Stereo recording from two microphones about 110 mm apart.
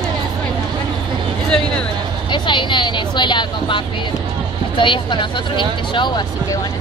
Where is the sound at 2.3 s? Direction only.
45° left (ahead or behind).